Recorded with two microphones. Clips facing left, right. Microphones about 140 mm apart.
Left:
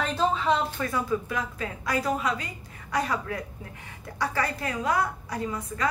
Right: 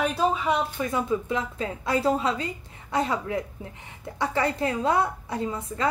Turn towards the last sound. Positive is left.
turn(degrees=-25)  # may be behind; listen again after turning